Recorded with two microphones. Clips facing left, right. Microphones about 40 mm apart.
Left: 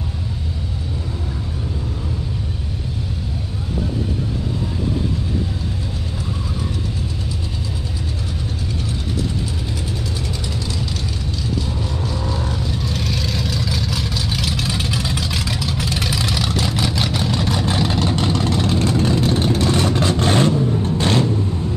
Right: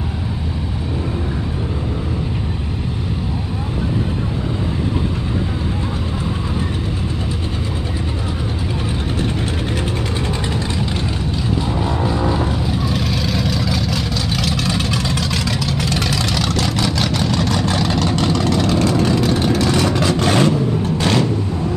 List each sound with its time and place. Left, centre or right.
12.0 s vehicle: right
12.8 s vehicle: centre
18.0 s vehicle: right